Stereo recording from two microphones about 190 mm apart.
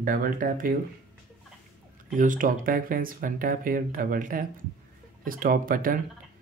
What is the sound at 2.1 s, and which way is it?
Speech, 45° right (ahead or behind).